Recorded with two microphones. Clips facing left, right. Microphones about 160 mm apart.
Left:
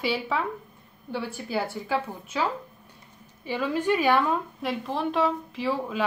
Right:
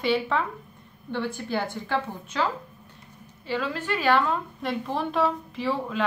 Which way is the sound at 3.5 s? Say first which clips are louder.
Left 3 dB; 10° left (ahead or behind).